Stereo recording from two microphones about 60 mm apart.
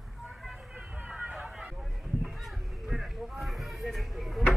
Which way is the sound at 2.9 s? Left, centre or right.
Centre.